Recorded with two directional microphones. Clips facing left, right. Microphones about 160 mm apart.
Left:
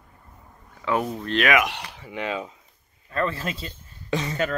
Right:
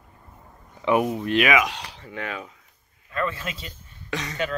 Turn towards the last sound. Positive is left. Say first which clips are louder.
# left 5 dB
turn(degrees=30)  # may be behind; listen again after turning